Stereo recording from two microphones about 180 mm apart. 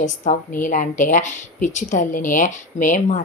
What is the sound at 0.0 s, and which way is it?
Speech, 40° left (ahead or behind).